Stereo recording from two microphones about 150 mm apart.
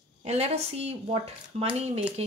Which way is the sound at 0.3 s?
45° right (ahead or behind).